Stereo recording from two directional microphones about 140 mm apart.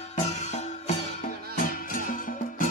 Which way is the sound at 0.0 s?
55° left (ahead or behind).